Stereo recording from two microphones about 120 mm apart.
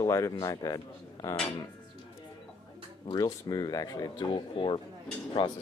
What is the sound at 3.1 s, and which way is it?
Speech, 35° left (ahead or behind).